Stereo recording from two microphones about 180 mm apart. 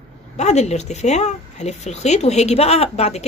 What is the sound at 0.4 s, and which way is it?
A woman's voice, 40° left (ahead or behind).